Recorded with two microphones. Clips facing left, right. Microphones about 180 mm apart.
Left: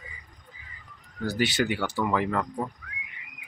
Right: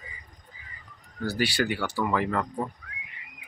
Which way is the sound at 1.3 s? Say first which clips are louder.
Left 1 dB; 20° left (ahead or behind).